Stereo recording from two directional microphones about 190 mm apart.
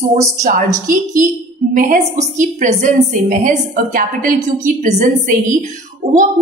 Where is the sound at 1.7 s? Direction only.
40° right (ahead or behind).